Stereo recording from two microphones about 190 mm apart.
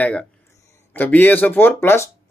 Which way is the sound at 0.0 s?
5° left (ahead or behind).